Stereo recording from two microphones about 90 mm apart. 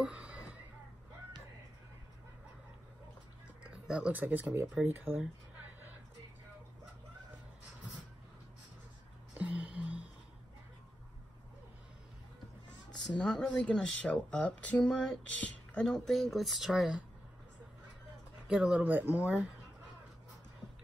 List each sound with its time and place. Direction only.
0.0 s a sound: 15° right (ahead or behind)
3.7 s speech: 10° right (ahead or behind)
9.4 s music: 15° right (ahead or behind)
12.9 s speech: 10° left (ahead or behind)
18.5 s speech: 10° right (ahead or behind)
18.9 s speech: 20° right (ahead or behind)